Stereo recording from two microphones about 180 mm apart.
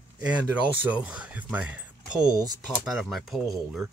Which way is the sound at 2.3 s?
20° right (ahead or behind).